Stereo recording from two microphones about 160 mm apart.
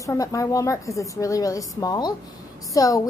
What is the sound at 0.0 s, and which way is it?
A woman's voice, 20° left (ahead or behind).